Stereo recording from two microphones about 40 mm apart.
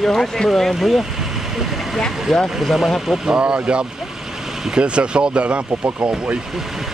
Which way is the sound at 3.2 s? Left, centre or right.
Right.